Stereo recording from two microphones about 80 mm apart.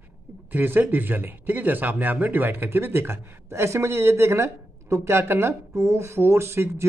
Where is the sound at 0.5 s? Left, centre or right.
Right.